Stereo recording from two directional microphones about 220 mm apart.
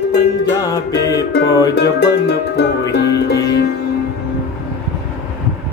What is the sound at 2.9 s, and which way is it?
Music, 50° left (ahead or behind).